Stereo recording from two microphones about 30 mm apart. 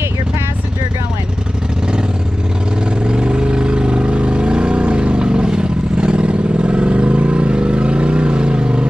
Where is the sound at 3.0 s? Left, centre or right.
Right.